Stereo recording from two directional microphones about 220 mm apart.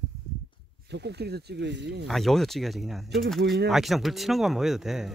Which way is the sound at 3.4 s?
50° right (ahead or behind).